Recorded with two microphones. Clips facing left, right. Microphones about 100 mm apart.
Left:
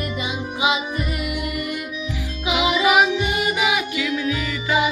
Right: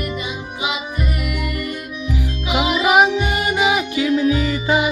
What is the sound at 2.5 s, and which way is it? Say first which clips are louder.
Music: right 1 dB; 35° right (ahead or behind).